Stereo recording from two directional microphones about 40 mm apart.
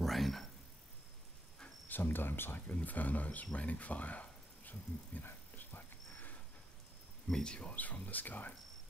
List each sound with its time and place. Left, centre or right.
0.0 s a sound: centre
1.9 s speech: left
2.6 s speech: left
5.2 s a sound: left
7.4 s speech: left
7.7 s speech: left